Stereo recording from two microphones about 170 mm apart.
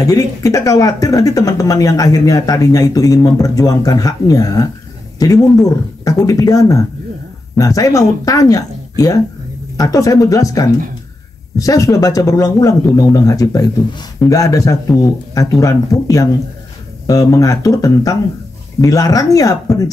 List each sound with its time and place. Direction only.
0.0 s speech: 20° left (ahead or behind)